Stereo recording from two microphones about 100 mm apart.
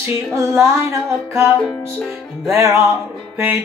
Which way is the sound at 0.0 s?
30° right (ahead or behind).